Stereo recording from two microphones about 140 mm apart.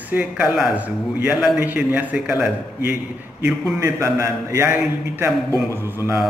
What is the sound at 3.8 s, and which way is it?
A man's voice, 20° right (ahead or behind).